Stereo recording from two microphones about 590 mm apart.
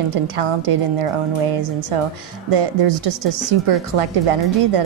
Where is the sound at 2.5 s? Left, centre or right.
Right.